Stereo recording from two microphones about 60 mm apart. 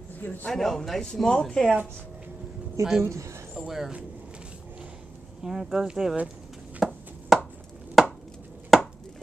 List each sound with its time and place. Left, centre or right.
0.2 s a man's voice: left
0.5 s speech: centre
3.0 s a woman's voice: right
3.5 s speech: centre
5.4 s speech: centre
6.8 s a sound: centre
7.3 s chopping: centre